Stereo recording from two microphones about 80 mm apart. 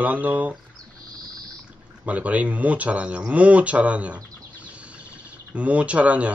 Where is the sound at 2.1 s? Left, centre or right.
Centre.